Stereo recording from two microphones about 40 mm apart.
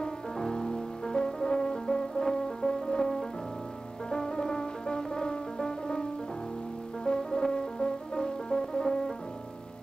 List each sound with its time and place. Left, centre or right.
0.0 s music: centre
7.1 s music: left